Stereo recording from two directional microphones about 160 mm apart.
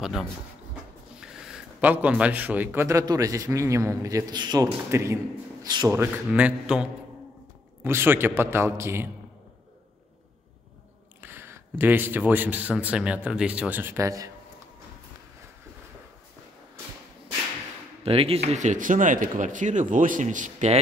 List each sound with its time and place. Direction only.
0.0 s a man's voice: centre (ahead or behind); by 5.9 s 25° right (ahead or behind)
5.9 s a man's voice: 10° right (ahead or behind)
11.1 s a sound: 10° right (ahead or behind)
11.8 s a man's voice: 10° right (ahead or behind)
18.0 s speech: 35° right (ahead or behind)